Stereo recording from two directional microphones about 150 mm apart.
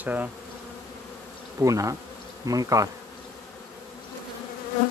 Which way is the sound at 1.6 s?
20° right (ahead or behind).